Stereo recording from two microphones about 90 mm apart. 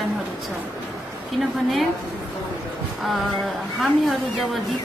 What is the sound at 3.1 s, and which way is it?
A woman's voice, centre (ahead or behind).